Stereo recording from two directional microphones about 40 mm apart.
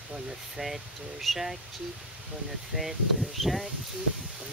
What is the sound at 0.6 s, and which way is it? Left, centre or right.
Speech, centre.